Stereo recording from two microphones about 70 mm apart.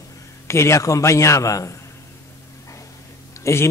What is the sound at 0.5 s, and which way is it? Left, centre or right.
A man's voice, left.